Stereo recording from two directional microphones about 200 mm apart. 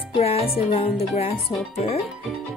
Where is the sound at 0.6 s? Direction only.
30° left (ahead or behind).